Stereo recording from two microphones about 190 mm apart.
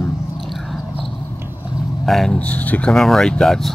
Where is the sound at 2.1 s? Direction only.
Centre (ahead or behind).